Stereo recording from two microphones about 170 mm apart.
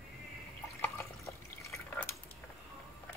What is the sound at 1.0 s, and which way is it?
Water, 15° left (ahead or behind).